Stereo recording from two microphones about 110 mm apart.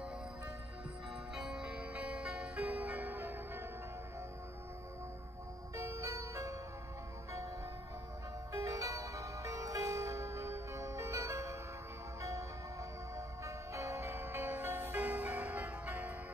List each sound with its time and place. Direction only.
1.3 s music: 5° right (ahead or behind)
5.8 s music: 30° right (ahead or behind)
8.5 s music: 30° right (ahead or behind); by 16.1 s 15° right (ahead or behind)